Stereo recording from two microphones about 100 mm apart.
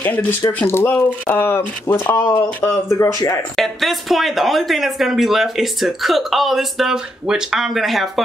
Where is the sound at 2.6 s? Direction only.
30° left (ahead or behind).